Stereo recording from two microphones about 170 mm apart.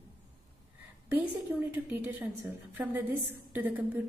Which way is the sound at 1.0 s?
10° right (ahead or behind).